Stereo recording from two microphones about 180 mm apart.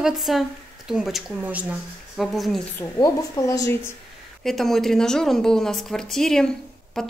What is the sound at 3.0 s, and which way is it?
Speech, 20° left (ahead or behind).